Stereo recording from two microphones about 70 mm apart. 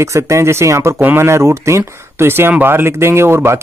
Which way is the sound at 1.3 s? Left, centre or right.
Right.